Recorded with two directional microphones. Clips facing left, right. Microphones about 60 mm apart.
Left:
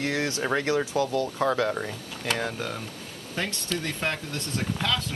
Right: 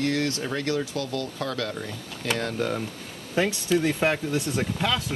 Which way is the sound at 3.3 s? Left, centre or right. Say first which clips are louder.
Right 8 dB; centre.